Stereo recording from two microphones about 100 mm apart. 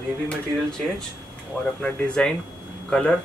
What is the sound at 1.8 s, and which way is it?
Speech, 10° left (ahead or behind).